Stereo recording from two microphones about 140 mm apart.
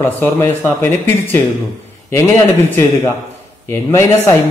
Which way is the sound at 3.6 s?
20° left (ahead or behind).